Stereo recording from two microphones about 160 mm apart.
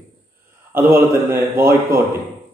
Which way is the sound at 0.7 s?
15° right (ahead or behind).